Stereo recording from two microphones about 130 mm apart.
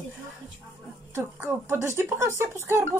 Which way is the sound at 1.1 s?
20° right (ahead or behind).